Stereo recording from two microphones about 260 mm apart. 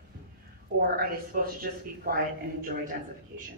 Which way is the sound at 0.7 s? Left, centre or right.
Right.